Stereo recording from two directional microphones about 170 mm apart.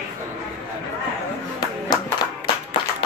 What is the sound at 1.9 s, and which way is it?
Clapping, 25° left (ahead or behind).